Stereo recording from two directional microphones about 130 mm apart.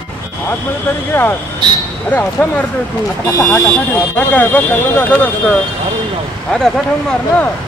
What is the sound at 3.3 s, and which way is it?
Speech, 20° left (ahead or behind).